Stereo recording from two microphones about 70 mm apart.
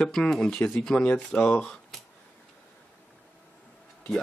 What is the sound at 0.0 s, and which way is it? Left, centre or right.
Speech, centre.